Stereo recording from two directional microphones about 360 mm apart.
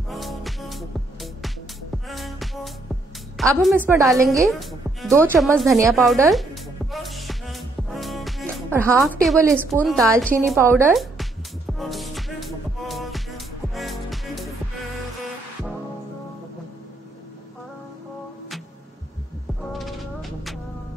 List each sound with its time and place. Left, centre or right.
0.1 s music: centre
3.3 s a woman's voice: centre
10.4 s music: centre
19.7 s music: centre